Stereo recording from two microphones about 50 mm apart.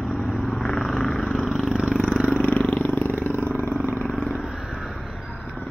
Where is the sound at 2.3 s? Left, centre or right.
Left.